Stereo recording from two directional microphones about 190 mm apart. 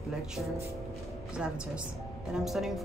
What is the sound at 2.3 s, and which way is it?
Speech, centre (ahead or behind).